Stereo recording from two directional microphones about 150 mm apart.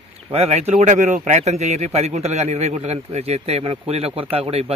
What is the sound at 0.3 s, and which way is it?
A man's voice, 45° right (ahead or behind).